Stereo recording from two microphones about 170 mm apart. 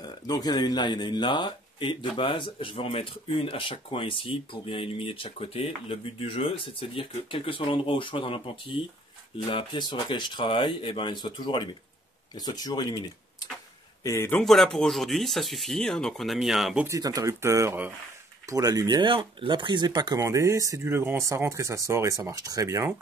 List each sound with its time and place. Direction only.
0.0 s speech: 25° left (ahead or behind)
14.4 s speech: centre (ahead or behind)
16.8 s speech: 20° right (ahead or behind)